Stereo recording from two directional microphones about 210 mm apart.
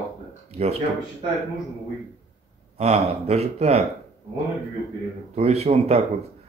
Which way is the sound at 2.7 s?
30° right (ahead or behind).